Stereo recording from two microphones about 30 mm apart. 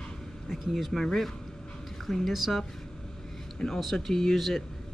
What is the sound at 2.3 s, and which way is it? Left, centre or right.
Speech, centre.